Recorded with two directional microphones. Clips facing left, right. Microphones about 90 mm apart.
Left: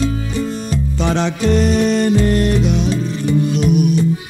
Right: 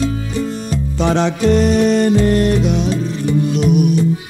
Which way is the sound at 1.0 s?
30° right (ahead or behind).